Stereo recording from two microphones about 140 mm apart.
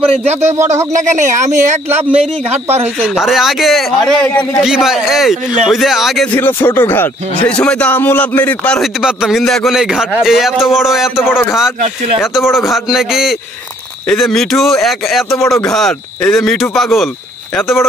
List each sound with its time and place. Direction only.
0.1 s speech: 50° right (ahead or behind)
0.9 s speech: 65° right (ahead or behind)
3.2 s a man's voice: centre (ahead or behind)
6.2 s a man's voice: 15° left (ahead or behind)
17.6 s a man's voice: 20° left (ahead or behind)